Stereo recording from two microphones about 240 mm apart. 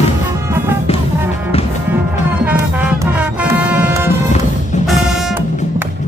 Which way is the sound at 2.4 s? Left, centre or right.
Centre.